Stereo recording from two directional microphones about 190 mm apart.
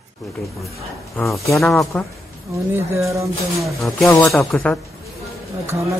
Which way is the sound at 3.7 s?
Centre (ahead or behind).